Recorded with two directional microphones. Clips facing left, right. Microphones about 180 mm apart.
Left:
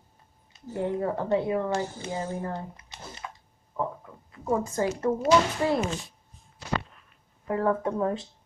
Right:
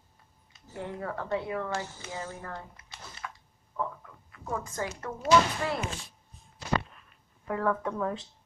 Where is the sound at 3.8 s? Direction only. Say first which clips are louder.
Left 4 dB; 25° left (ahead or behind).